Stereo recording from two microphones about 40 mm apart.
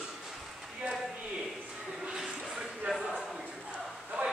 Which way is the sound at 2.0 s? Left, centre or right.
Centre.